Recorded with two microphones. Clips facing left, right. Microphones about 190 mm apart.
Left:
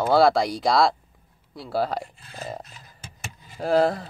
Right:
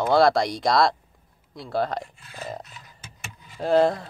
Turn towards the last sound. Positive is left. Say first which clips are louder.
# right 1 dB
turn(degrees=5)  # may be behind; listen again after turning